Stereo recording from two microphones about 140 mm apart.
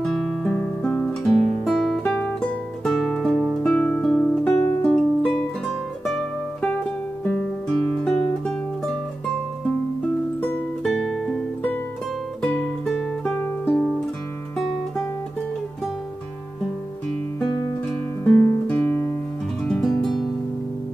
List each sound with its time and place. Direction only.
0.0 s guitar: centre (ahead or behind)
4.6 s music: 15° left (ahead or behind)
4.9 s music: 5° left (ahead or behind)
7.2 s guitar: 5° left (ahead or behind)
10.8 s music: centre (ahead or behind)
12.8 s music: 5° left (ahead or behind)
18.2 s music: 10° left (ahead or behind)
19.6 s music: 5° left (ahead or behind)